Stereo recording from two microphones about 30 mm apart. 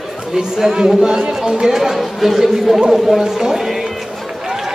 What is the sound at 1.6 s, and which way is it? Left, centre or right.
Speech, centre.